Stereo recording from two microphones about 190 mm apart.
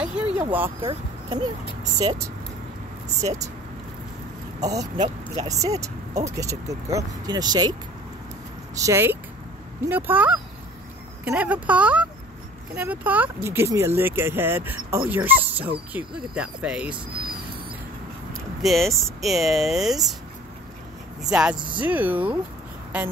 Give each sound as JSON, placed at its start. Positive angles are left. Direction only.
{"t": 0.0, "sound": "a sound", "side_deg": -5}
{"t": 0.7, "sound": "speech", "side_deg": -30}
{"t": 2.0, "sound": "speech", "side_deg": -15}
{"t": 4.6, "sound": "speech", "side_deg": -20}
{"t": 5.0, "sound": "speech", "side_deg": -35}
{"t": 5.5, "sound": "speech", "side_deg": -15}
{"t": 8.7, "sound": "speech", "side_deg": -15}
{"t": 18.6, "sound": "speech", "side_deg": 0}
{"t": 21.3, "sound": "speech", "side_deg": -5}